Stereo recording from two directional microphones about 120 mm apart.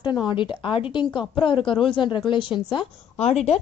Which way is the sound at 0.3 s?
45° left (ahead or behind).